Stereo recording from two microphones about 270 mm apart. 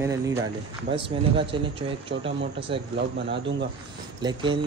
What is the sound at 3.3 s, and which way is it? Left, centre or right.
Speech, right.